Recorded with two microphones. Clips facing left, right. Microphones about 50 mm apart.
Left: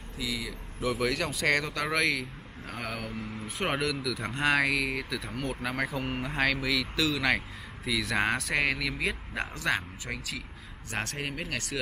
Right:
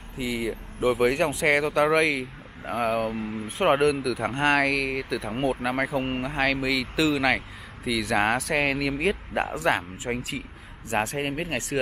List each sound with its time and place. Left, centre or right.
0.2 s speech: right
0.7 s speech: centre
1.4 s speech: centre
4.3 s speech: centre
6.2 s speech: centre
7.2 s speech: centre
11.1 s speech: right